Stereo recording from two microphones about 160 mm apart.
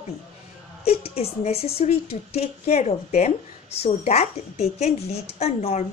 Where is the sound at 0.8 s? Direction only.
40° left (ahead or behind).